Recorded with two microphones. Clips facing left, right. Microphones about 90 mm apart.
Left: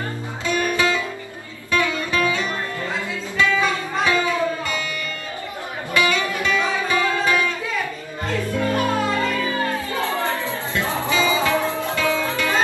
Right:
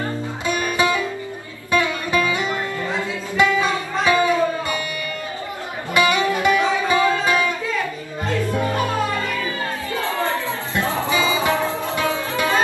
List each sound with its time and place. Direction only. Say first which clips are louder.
0.5 s music: even; 20° right (ahead or behind)
4.0 s music: right 3 dB; 20° right (ahead or behind)
5.9 s music: right 3 dB; 20° right (ahead or behind)
8.5 s music: left 3 dB; 20° right (ahead or behind)
10.7 s music: right 2 dB; 20° right (ahead or behind)